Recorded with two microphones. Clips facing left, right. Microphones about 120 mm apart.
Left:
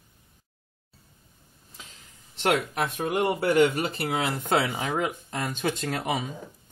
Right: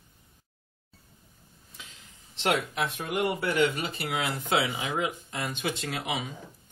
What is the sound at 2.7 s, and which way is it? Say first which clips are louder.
Speech: left 3 dB; 50° left (ahead or behind).